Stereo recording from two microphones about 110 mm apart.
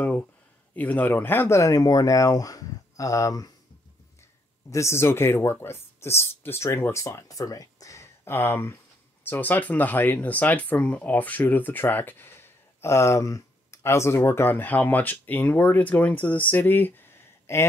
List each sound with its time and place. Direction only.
0.7 s speech: 15° left (ahead or behind); by 3.5 s 30° left (ahead or behind)
4.6 s speech: 25° left (ahead or behind)